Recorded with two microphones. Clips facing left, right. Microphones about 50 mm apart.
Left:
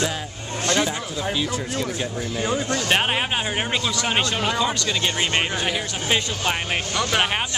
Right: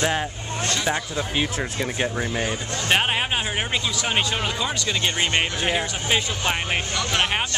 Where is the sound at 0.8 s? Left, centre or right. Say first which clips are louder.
Right 1 dB; right.